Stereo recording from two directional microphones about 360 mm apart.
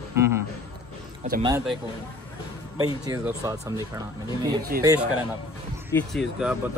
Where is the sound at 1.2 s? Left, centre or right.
Right.